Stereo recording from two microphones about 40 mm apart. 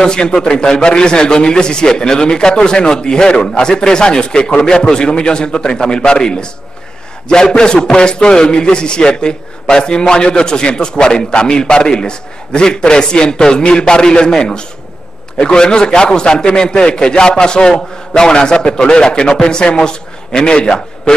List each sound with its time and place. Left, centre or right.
0.0 s a man's voice: centre